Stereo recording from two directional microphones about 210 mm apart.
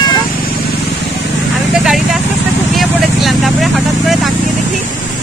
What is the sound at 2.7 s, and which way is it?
Speech, centre (ahead or behind).